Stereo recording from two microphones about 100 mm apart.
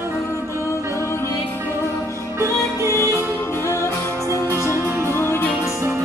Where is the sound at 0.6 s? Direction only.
30° left (ahead or behind).